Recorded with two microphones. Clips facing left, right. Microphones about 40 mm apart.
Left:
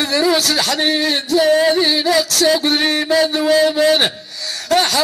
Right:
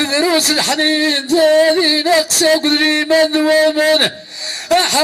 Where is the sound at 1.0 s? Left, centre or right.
Right.